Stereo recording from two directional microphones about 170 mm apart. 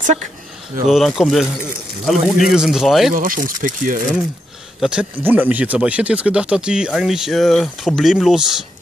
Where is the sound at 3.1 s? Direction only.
55° right (ahead or behind).